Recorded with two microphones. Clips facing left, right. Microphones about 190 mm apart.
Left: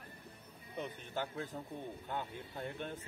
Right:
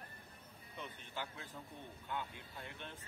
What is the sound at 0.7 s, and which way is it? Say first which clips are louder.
Speech: left 7 dB; 45° left (ahead or behind).